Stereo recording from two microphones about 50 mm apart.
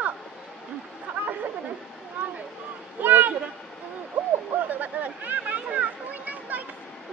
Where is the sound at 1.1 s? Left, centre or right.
Right.